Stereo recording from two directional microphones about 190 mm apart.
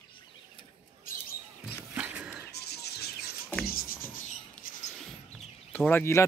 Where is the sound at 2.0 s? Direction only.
10° right (ahead or behind).